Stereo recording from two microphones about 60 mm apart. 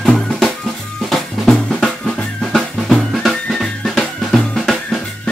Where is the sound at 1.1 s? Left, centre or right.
Centre.